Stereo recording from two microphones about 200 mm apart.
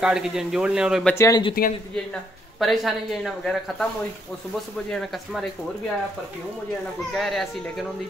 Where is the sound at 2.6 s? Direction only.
Centre (ahead or behind).